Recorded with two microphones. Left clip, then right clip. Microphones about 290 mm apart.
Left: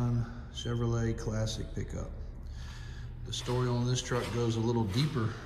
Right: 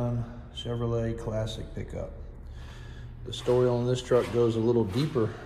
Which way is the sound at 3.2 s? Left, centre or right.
Centre.